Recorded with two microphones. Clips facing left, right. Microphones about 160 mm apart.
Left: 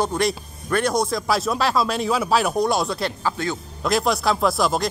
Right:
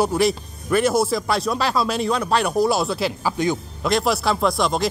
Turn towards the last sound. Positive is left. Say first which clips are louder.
# even
turn(degrees=0)  # may be behind; listen again after turning